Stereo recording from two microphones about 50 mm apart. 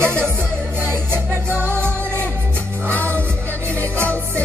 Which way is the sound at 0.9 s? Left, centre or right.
Right.